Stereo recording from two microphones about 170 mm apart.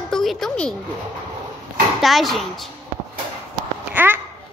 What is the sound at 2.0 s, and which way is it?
Speech, centre (ahead or behind).